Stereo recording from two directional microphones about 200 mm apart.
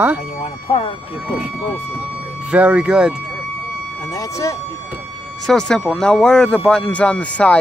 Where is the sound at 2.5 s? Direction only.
5° right (ahead or behind).